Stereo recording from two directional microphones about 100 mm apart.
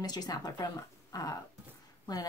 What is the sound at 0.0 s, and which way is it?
Speech, 40° left (ahead or behind).